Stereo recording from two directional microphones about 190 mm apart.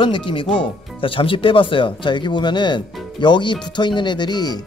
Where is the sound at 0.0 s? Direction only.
25° left (ahead or behind).